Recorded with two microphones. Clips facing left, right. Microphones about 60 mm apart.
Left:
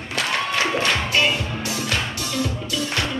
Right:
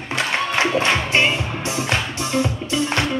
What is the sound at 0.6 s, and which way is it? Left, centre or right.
Music, right.